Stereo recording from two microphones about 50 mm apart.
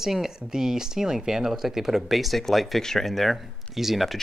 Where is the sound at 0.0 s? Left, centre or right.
Centre.